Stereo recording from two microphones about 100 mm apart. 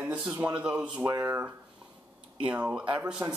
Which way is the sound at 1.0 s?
25° right (ahead or behind).